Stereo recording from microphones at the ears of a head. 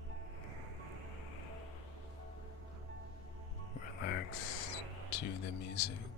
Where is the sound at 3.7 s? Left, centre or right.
Left.